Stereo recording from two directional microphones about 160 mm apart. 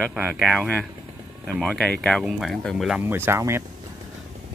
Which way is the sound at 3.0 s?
15° right (ahead or behind).